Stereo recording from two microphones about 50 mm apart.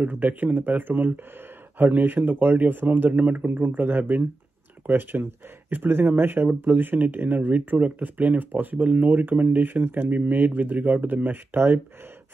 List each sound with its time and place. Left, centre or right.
0.0 s speech: right